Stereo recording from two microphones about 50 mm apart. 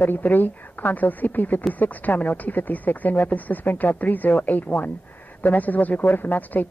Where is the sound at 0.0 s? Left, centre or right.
Left.